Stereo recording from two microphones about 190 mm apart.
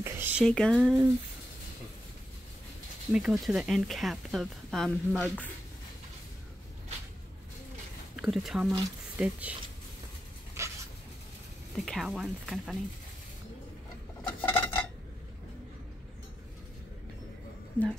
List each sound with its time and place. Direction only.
0.0 s a sound: 10° right (ahead or behind)
0.5 s speech: 5° left (ahead or behind)
3.1 s speech: 5° right (ahead or behind)
8.2 s speech: centre (ahead or behind)
10.6 s dog: 15° right (ahead or behind)
11.8 s speech: centre (ahead or behind)
14.2 s cutlery: 10° left (ahead or behind)
17.8 s speech: 10° left (ahead or behind)